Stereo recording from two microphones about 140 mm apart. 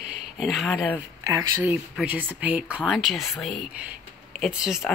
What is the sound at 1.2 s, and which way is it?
Speech, 20° right (ahead or behind).